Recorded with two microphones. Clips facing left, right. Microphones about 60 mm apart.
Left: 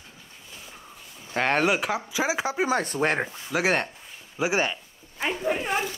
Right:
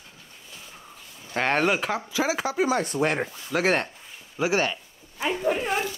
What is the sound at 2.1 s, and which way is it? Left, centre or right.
Speech, centre.